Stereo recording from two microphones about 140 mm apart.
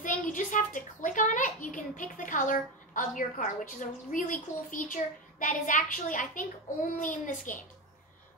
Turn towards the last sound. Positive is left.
turn(degrees=70)  # may be behind; listen again after turning